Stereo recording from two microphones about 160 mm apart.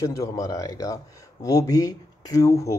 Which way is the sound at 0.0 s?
20° left (ahead or behind).